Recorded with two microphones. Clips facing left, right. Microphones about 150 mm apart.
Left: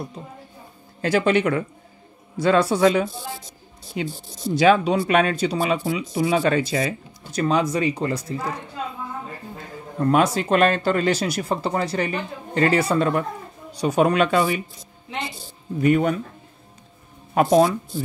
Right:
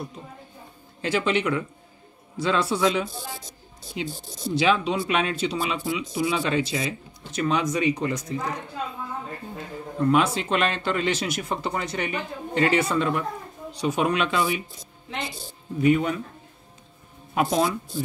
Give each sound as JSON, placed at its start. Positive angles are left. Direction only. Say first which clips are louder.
{"t": 1.0, "sound": "speech", "louder": "left 5 dB", "side_deg": 45}
{"t": 7.3, "sound": "speech", "louder": "left 3 dB", "side_deg": 35}
{"t": 10.1, "sound": "speech", "louder": "left 6 dB", "side_deg": 45}
{"t": 15.8, "sound": "speech", "louder": "left 2 dB", "side_deg": 50}
{"t": 17.3, "sound": "speech", "louder": "left 6 dB", "side_deg": 40}